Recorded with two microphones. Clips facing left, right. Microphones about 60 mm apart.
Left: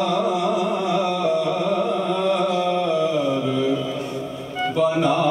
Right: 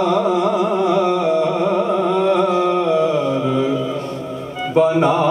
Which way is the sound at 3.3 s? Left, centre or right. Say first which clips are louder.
Right 3 dB; right.